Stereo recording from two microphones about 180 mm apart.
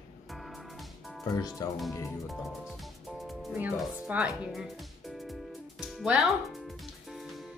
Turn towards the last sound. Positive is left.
turn(degrees=0)  # may be behind; listen again after turning